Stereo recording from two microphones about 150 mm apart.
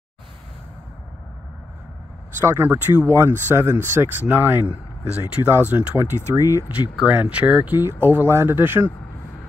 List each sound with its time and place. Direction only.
2.4 s speech: 15° right (ahead or behind)